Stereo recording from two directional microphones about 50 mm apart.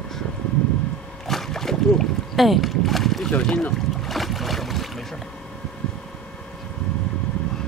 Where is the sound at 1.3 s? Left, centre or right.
Centre.